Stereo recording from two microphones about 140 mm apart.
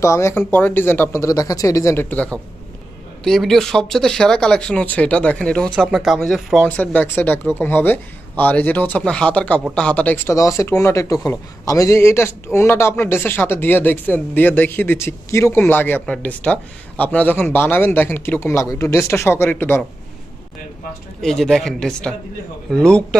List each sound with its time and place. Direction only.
0.0 s speech: 20° left (ahead or behind); by 6.7 s centre (ahead or behind)
6.8 s speech: 10° left (ahead or behind)
21.2 s speech: centre (ahead or behind)